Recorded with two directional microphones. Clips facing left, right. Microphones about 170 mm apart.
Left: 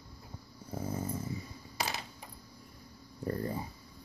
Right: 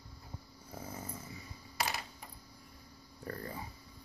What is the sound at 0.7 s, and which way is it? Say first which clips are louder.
Dog: left 8 dB; 35° left (ahead or behind).